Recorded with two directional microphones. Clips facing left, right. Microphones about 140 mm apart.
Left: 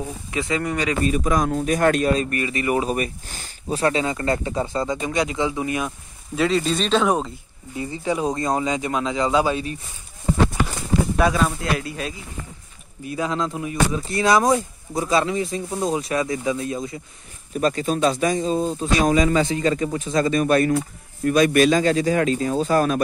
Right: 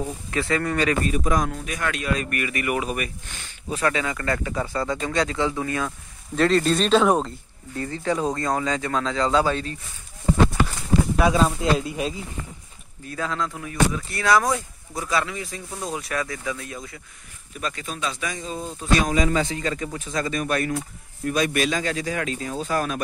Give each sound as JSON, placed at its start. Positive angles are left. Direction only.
{"t": 0.3, "sound": "speech", "side_deg": 15}
{"t": 1.4, "sound": "speech", "side_deg": 35}
{"t": 6.3, "sound": "speech", "side_deg": 5}
{"t": 11.3, "sound": "speech", "side_deg": -20}
{"t": 13.0, "sound": "speech", "side_deg": 15}
{"t": 17.6, "sound": "speech", "side_deg": 35}
{"t": 20.7, "sound": "speech", "side_deg": 60}
{"t": 21.6, "sound": "speech", "side_deg": 35}